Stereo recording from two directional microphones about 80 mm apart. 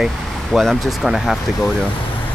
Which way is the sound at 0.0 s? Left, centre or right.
Centre.